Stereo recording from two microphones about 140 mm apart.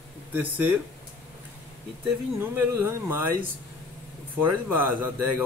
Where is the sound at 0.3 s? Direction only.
10° right (ahead or behind).